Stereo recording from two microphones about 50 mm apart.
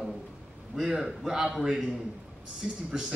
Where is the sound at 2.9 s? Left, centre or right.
Centre.